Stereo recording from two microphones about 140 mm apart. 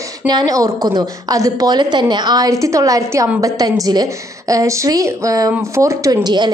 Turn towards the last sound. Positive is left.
turn(degrees=-30)  # may be behind; listen again after turning